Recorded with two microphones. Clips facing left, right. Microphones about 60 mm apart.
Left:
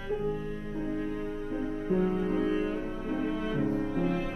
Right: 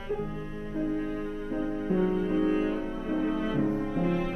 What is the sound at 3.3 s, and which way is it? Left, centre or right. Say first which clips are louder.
Music: right 2 dB; right.